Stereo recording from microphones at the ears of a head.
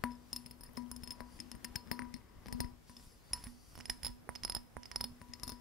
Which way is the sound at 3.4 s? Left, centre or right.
Right.